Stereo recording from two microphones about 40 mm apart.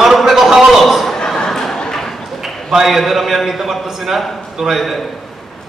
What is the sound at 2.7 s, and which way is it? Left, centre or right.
A man's voice, centre.